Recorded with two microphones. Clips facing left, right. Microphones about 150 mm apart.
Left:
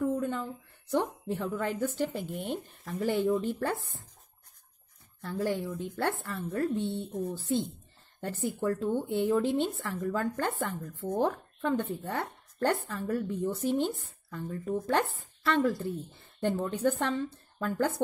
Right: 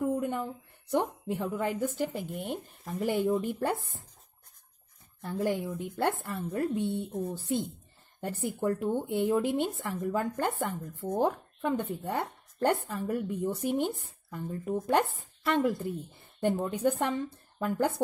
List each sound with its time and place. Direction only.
0.0 s a woman's voice: 15° right (ahead or behind)
5.2 s speech: 20° right (ahead or behind)
8.5 s speech: 15° right (ahead or behind)